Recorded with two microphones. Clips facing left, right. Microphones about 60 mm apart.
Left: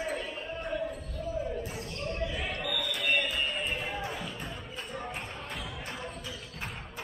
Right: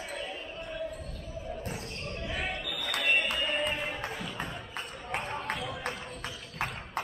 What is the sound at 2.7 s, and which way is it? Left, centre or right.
Music, right.